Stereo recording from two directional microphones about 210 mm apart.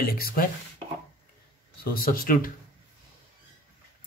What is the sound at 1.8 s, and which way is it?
Speech, 45° left (ahead or behind).